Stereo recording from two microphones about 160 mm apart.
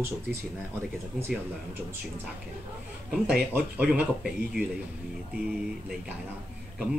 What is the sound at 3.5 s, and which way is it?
Speech, 10° right (ahead or behind).